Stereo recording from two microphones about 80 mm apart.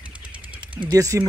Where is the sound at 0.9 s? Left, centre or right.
Right.